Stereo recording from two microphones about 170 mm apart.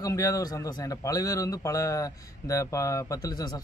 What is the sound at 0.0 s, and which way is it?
A man's voice, 20° left (ahead or behind).